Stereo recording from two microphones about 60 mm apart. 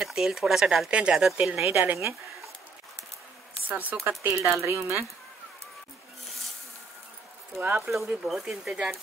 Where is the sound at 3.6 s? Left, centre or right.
Right.